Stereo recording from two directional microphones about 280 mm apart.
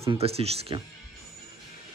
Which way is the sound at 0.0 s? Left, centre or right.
Centre.